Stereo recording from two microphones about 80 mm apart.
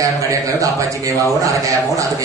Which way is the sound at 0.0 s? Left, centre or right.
Right.